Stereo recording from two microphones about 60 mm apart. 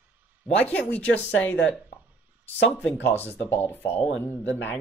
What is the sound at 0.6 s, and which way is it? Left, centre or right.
A woman's voice, left.